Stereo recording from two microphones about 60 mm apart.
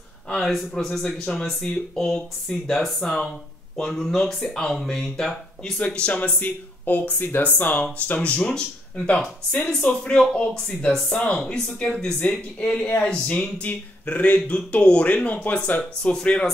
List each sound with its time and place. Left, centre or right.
0.3 s speech: centre
5.8 s speech: centre
10.1 s speech: centre
16.0 s speech: centre